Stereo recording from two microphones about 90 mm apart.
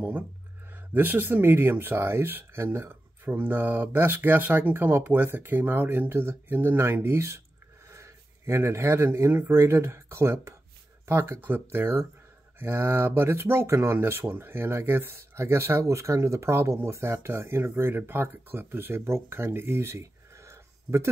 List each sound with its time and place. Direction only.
0.9 s speech: 20° right (ahead or behind)